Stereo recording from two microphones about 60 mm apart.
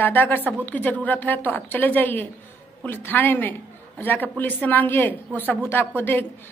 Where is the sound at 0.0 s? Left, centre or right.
Left.